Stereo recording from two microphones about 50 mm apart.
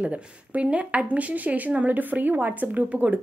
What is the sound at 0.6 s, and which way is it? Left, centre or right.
Speech, right.